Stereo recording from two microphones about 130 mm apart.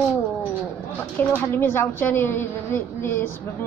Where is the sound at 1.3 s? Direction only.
15° left (ahead or behind).